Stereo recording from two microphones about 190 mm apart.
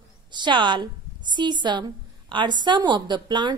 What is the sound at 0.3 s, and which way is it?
A woman's voice, 25° right (ahead or behind).